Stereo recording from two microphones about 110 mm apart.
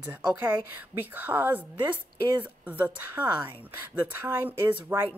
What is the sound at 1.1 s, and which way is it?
A woman's voice, 20° right (ahead or behind).